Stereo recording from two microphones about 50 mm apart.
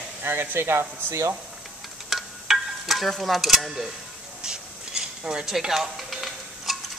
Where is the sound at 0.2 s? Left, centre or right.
Right.